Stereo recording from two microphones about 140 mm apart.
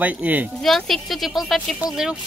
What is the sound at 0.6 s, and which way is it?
A man's voice, centre (ahead or behind).